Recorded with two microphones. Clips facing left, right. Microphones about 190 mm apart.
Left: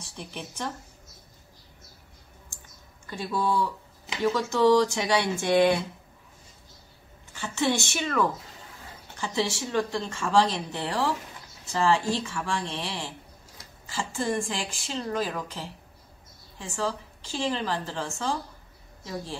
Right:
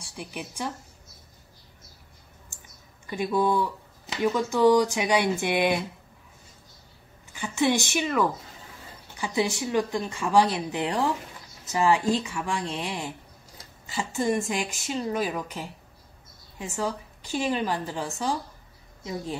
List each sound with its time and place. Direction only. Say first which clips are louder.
0.2 s speech: right 2 dB; 5° right (ahead or behind)
3.1 s speech: right 4 dB; 15° right (ahead or behind)
7.3 s speech: right 2 dB; 15° right (ahead or behind)